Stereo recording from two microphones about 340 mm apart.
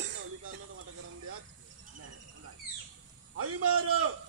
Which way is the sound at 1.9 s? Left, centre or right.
Right.